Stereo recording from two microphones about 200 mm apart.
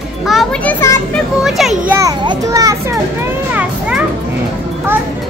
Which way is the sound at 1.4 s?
Centre (ahead or behind).